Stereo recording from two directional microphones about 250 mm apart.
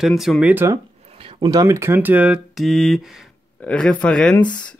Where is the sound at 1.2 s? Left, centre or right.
Centre.